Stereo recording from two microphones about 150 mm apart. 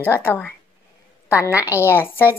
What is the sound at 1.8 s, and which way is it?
Speech, 15° left (ahead or behind).